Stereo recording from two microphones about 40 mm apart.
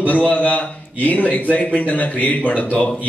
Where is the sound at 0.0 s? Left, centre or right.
Left.